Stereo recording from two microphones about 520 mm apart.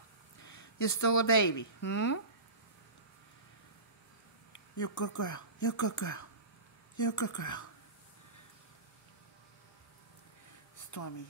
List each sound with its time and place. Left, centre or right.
0.4 s speech: left
4.5 s speech: left
10.9 s speech: left